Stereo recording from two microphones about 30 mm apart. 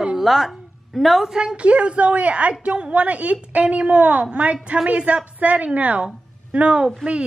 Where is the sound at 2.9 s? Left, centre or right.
Right.